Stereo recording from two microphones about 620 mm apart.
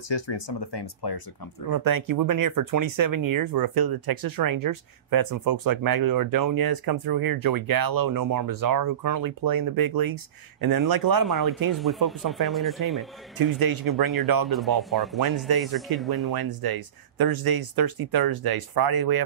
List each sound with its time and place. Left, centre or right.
0.1 s speech: left
1.7 s speech: right
11.2 s speech: centre
13.4 s speech: right
14.8 s speech: centre
15.1 s speech: right